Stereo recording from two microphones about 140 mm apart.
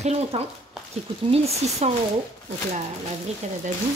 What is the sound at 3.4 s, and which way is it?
Frying, 55° right (ahead or behind).